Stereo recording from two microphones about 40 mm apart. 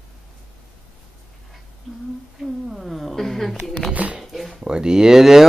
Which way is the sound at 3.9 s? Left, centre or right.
Right.